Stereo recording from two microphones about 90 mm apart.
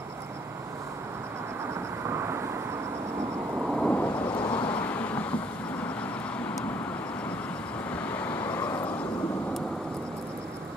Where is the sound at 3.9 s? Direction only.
15° left (ahead or behind).